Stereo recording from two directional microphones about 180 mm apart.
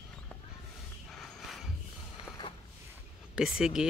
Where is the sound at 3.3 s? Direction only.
5° right (ahead or behind).